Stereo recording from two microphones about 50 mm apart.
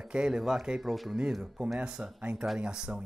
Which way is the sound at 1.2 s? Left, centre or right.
Centre.